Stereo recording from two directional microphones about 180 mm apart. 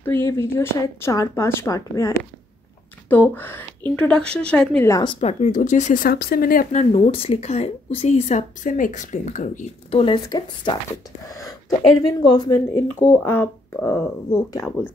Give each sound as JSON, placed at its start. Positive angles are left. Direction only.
{"t": 0.0, "sound": "speech", "side_deg": 10}
{"t": 4.9, "sound": "speech", "side_deg": 30}
{"t": 6.8, "sound": "a woman's voice", "side_deg": 30}